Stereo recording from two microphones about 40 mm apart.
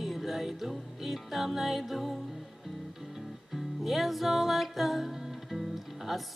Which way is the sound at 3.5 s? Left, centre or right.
Centre.